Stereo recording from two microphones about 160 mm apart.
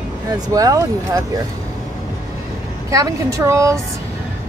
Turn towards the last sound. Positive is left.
turn(degrees=-20)  # may be behind; listen again after turning